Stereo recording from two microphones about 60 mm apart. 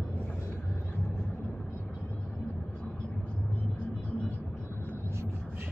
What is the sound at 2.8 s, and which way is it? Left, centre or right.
Vehicle, left.